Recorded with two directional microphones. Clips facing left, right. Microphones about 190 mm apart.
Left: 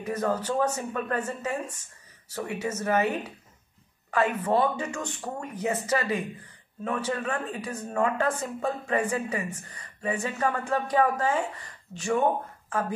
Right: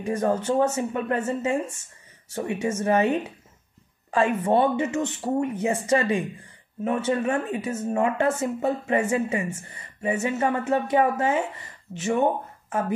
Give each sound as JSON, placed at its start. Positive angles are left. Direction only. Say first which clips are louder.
{"t": 0.0, "sound": "speech", "louder": "right 4 dB", "side_deg": -30}
{"t": 4.1, "sound": "speech", "louder": "right 3 dB", "side_deg": -30}